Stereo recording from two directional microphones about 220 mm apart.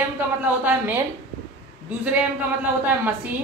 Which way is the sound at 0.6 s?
10° right (ahead or behind).